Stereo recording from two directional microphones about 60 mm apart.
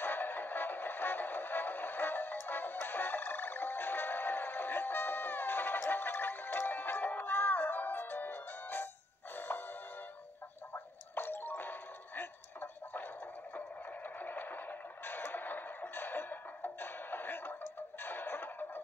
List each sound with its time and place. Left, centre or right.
0.0 s music: left
10.7 s music: left
13.6 s a sound: left
18.0 s music: left